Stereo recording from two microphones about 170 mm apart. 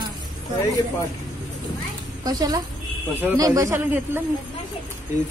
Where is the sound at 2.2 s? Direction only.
20° right (ahead or behind).